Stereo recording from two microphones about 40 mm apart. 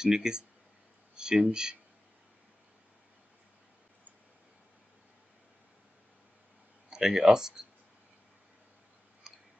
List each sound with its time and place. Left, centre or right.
0.0 s speech: centre
6.9 s speech: centre
9.3 s a sound: centre